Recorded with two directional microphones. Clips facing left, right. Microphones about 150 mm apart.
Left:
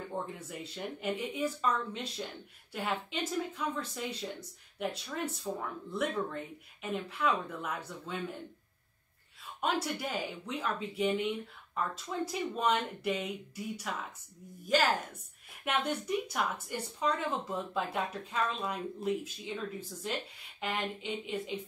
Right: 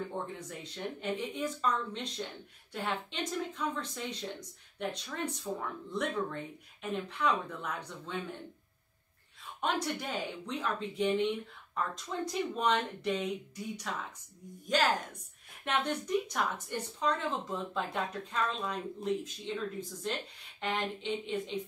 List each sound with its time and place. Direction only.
0.4 s speech: 5° left (ahead or behind)
9.6 s speech: 5° left (ahead or behind)